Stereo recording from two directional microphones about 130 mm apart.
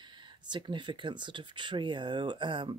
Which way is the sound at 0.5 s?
40° right (ahead or behind).